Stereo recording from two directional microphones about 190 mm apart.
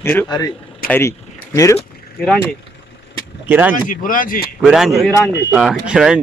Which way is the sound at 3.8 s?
45° left (ahead or behind).